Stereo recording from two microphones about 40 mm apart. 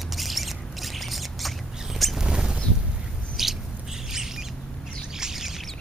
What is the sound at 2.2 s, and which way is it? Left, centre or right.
Rodents, right.